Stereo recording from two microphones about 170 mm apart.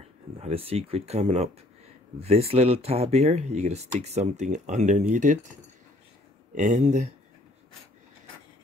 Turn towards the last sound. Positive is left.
turn(degrees=-45)  # may be behind; listen again after turning